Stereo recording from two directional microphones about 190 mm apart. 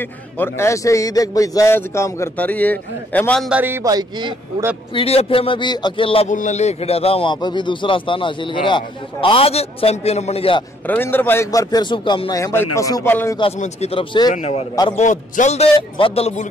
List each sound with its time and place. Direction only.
0.0 s a man's voice: 10° left (ahead or behind)
3.4 s a man's voice: 10° right (ahead or behind)
4.9 s a man's voice: 30° left (ahead or behind)
10.9 s a man's voice: 10° left (ahead or behind)
13.4 s a man's voice: 35° left (ahead or behind)
14.3 s a man's voice: 35° left (ahead or behind)